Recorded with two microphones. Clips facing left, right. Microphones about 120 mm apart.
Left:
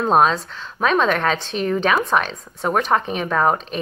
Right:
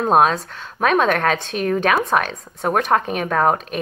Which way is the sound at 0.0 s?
50° right (ahead or behind).